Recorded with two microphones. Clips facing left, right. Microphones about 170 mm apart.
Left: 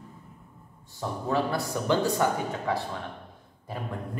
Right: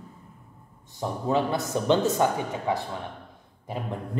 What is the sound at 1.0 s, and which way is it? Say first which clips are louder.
A man's voice: right 2 dB; 20° right (ahead or behind).